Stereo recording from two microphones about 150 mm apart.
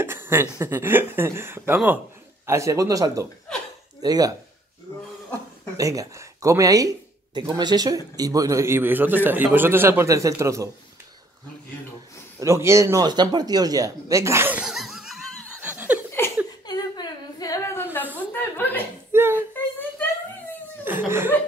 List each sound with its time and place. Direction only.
0.0 s a man's voice: 15° right (ahead or behind)
3.5 s chuckle: 5° left (ahead or behind)
4.0 s speech: 25° right (ahead or behind)
5.8 s a man's voice: 20° right (ahead or behind)
12.4 s speech: 20° right (ahead or behind)
14.6 s laughter: centre (ahead or behind)
16.6 s a sound: 30° left (ahead or behind)
18.1 s chuckle: 15° left (ahead or behind)
19.1 s a sound: 15° right (ahead or behind)
20.8 s chuckle: 15° right (ahead or behind)